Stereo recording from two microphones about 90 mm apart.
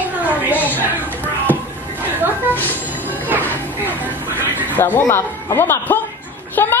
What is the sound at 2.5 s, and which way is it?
Music, 20° left (ahead or behind).